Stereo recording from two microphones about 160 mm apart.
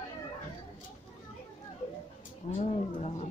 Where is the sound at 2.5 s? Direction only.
40° left (ahead or behind).